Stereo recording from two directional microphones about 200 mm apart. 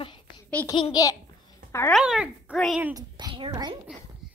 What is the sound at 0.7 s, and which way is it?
A child's voice, 20° left (ahead or behind).